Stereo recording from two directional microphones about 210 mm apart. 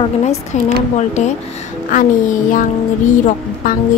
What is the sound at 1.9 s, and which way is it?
Speech, 40° left (ahead or behind).